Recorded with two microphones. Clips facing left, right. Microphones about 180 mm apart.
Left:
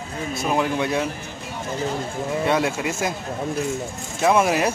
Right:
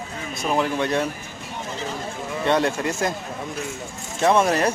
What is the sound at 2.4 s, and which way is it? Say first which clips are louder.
Speech: right 2 dB; 5° left (ahead or behind).